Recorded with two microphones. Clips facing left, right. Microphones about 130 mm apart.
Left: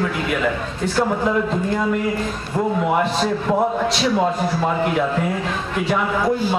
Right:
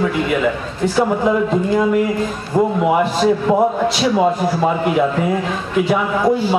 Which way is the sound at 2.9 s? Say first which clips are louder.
Right 4 dB; 5° right (ahead or behind).